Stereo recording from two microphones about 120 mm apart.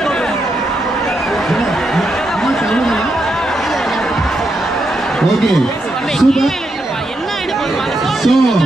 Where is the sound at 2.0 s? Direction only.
5° left (ahead or behind).